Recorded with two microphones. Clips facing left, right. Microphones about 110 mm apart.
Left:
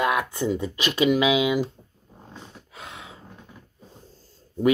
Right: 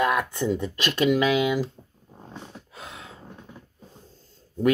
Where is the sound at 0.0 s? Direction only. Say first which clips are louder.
Even; 5° left (ahead or behind).